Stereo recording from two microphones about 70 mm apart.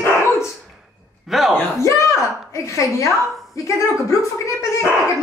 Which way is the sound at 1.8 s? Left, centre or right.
Left.